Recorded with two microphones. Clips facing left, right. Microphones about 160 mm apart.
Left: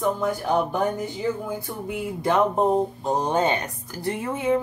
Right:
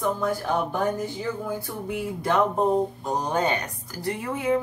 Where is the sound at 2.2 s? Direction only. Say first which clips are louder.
Left 2 dB; 20° left (ahead or behind).